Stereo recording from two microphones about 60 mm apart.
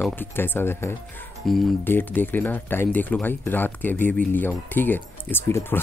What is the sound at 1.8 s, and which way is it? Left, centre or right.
Speech, left.